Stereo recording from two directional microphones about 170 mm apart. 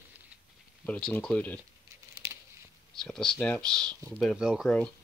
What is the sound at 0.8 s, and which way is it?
Speech, 5° left (ahead or behind).